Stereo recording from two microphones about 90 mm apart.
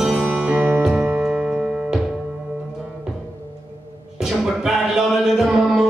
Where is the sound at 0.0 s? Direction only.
5° right (ahead or behind).